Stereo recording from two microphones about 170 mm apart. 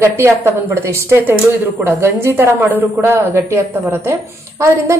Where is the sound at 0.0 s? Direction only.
15° right (ahead or behind).